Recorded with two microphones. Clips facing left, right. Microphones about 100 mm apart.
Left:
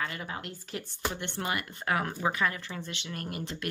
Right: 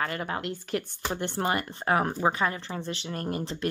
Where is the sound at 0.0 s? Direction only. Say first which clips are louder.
Right 6 dB; 55° right (ahead or behind).